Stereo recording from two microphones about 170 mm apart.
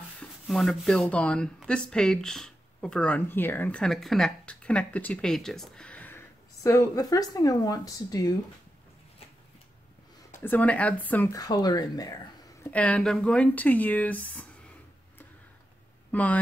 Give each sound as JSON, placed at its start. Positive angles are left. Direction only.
{"t": 0.2, "sound": "speech", "side_deg": 5}
{"t": 10.3, "sound": "speech", "side_deg": 10}
{"t": 11.3, "sound": "speech", "side_deg": 25}
{"t": 12.7, "sound": "speech", "side_deg": 5}
{"t": 16.1, "sound": "speech", "side_deg": 10}